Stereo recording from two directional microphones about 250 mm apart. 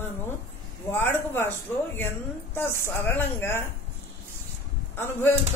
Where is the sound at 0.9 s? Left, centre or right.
Centre.